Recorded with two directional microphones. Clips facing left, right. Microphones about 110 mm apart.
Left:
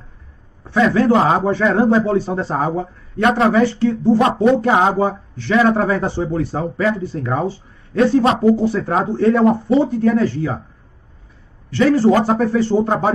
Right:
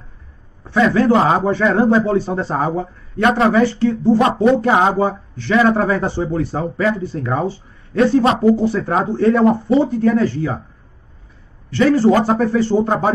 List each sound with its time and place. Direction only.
0.7 s speech: 10° left (ahead or behind)
3.6 s speech: 5° left (ahead or behind)
8.7 s speech: 20° left (ahead or behind)
11.7 s speech: 5° left (ahead or behind)